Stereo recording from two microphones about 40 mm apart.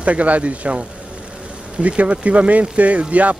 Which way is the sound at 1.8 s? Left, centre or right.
Right.